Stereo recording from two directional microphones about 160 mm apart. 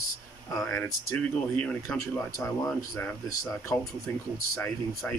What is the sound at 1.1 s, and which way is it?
Speech, 10° left (ahead or behind).